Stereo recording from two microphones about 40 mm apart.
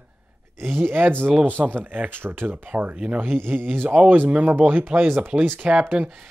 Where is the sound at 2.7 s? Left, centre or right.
Right.